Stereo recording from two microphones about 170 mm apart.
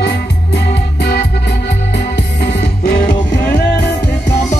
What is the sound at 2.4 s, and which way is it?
Music, 65° left (ahead or behind).